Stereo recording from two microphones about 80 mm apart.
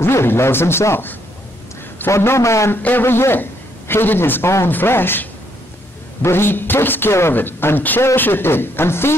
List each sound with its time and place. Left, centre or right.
0.0 s a man's voice: left
2.8 s a woman's voice: left